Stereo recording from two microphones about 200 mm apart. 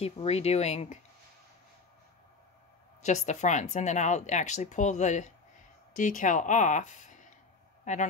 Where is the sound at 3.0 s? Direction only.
35° left (ahead or behind).